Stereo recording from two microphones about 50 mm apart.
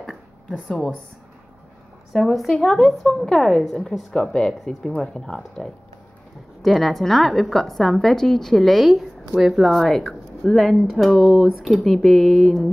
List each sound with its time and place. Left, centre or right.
2.1 s a woman's voice: centre
3.3 s a woman's voice: centre
6.6 s a woman's voice: centre